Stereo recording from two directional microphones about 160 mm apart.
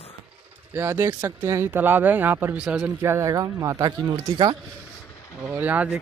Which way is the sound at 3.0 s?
15° right (ahead or behind).